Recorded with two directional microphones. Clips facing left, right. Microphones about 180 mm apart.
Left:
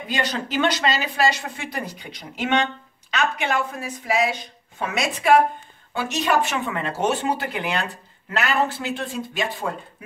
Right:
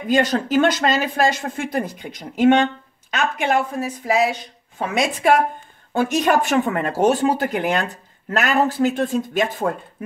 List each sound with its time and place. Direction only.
0.1 s a woman's voice: 50° right (ahead or behind)